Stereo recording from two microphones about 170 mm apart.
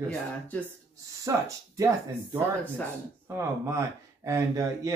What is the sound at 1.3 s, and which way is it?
Speech, 20° right (ahead or behind).